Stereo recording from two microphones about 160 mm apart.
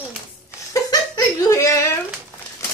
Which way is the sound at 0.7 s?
20° left (ahead or behind).